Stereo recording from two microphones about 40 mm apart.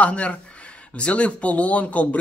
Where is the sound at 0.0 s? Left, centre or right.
Left.